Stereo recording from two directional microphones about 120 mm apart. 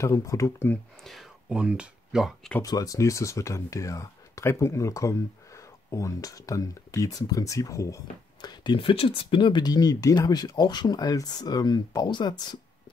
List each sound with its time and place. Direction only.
0.0 s speech: 25° left (ahead or behind)
1.0 s speech: centre (ahead or behind)
2.6 s speech: 30° left (ahead or behind)